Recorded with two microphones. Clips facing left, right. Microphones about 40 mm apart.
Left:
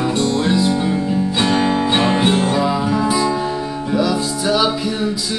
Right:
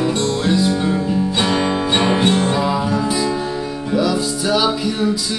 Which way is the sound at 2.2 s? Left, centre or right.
Centre.